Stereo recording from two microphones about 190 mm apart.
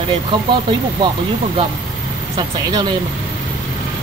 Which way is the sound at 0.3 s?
25° right (ahead or behind).